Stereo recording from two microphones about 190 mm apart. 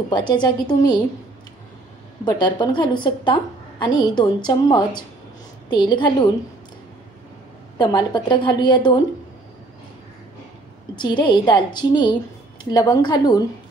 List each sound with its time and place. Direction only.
0.1 s a woman's voice: 25° left (ahead or behind)
2.2 s a woman's voice: 25° left (ahead or behind)
7.7 s a woman's voice: 20° left (ahead or behind)
11.0 s a woman's voice: 25° left (ahead or behind)